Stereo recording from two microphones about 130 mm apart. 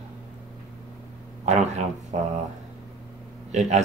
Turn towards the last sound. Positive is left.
turn(degrees=-60)  # may be behind; listen again after turning